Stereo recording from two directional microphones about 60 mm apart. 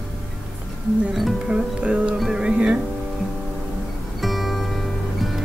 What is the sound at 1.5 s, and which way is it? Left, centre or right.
Music, centre.